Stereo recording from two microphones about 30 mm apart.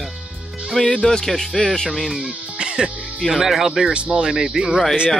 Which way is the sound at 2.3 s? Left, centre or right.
Right.